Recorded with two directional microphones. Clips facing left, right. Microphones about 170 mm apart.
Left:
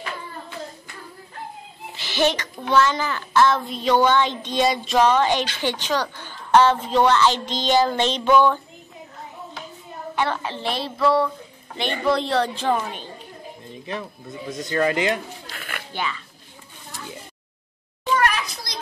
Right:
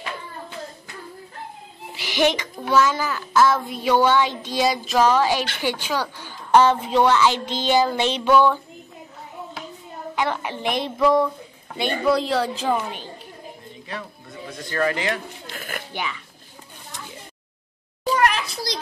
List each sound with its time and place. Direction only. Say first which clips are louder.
2.0 s a child's voice: right 1 dB; 15° right (ahead or behind)
10.1 s a woman's voice: even; 15° right (ahead or behind)
12.1 s a child's voice: even; 5° right (ahead or behind)
14.5 s speech: left 2 dB; 20° left (ahead or behind)
15.5 s music: right 4 dB; 40° right (ahead or behind)
15.9 s speech: left 3 dB; 15° right (ahead or behind)
18.0 s a sound: right 1 dB; 35° right (ahead or behind)